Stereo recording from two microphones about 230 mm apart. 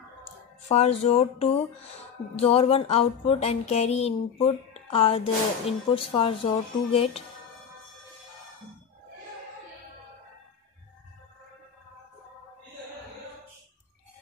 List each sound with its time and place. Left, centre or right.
0.7 s music: left